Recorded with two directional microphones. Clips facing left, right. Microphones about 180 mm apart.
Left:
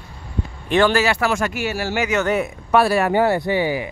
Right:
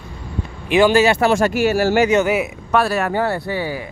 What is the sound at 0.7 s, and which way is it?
Speech, 10° right (ahead or behind).